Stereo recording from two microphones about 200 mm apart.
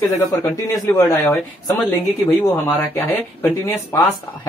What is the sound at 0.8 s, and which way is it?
Speech, 20° left (ahead or behind).